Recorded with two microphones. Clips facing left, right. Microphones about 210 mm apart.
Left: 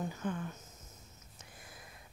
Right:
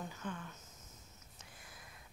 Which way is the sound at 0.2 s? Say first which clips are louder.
Left 7 dB; 45° left (ahead or behind).